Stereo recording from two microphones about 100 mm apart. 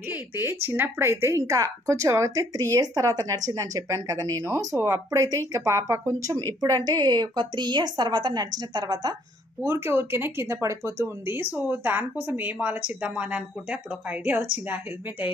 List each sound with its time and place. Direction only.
0.1 s a woman's voice: 20° right (ahead or behind); by 9.1 s 40° right (ahead or behind)
9.6 s speech: 25° right (ahead or behind)